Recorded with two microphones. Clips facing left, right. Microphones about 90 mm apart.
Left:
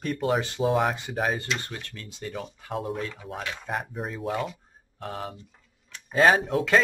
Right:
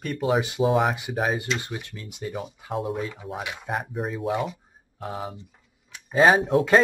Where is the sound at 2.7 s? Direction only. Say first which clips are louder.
Right 3 dB; centre (ahead or behind).